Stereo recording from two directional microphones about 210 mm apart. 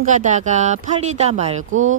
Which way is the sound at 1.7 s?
70° right (ahead or behind).